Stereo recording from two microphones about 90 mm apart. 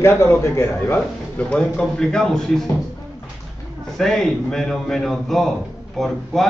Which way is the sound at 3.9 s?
5° left (ahead or behind).